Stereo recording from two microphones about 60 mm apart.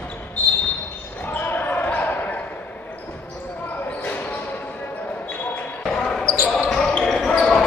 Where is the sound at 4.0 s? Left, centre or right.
Left.